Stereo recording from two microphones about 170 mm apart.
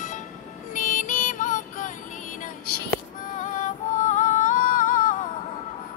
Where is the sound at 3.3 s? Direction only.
50° left (ahead or behind).